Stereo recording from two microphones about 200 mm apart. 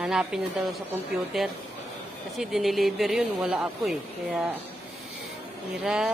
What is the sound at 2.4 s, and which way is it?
Speech, centre (ahead or behind).